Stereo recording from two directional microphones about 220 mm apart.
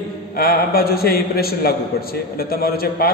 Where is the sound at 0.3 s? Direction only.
45° left (ahead or behind).